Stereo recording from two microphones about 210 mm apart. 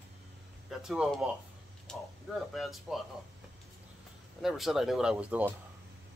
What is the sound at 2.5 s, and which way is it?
Speech, centre (ahead or behind).